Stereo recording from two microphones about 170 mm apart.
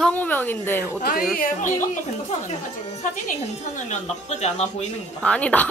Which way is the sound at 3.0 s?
45° left (ahead or behind).